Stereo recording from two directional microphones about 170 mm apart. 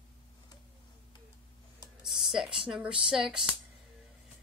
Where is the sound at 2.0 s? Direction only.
Centre (ahead or behind).